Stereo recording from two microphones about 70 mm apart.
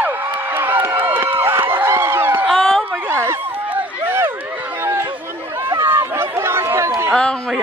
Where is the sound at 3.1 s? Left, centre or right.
Right.